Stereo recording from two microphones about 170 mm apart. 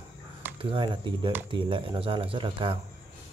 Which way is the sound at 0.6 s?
30° right (ahead or behind).